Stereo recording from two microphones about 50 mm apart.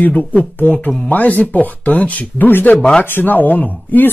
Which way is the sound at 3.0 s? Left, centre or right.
Left.